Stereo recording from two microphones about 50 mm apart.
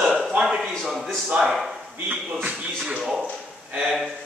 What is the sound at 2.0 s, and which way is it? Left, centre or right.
Speech, right.